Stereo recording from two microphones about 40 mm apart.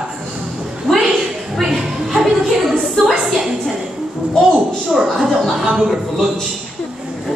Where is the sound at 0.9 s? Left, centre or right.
Centre.